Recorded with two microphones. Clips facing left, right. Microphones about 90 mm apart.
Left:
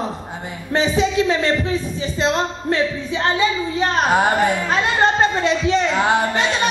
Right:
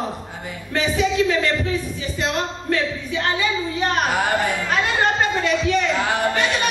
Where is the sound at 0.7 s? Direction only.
25° left (ahead or behind).